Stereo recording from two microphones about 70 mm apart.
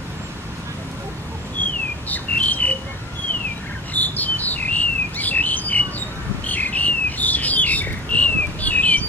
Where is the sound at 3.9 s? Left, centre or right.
Left.